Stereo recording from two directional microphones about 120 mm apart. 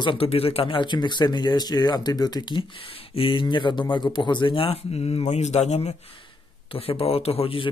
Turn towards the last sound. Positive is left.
turn(degrees=50)  # may be behind; listen again after turning